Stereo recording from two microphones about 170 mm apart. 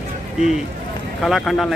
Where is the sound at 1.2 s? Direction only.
Centre (ahead or behind).